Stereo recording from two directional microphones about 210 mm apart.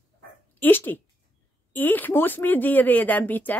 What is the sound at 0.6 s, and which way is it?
Speech, 10° left (ahead or behind).